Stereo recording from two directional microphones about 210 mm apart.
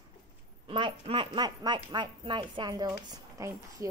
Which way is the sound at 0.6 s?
25° right (ahead or behind).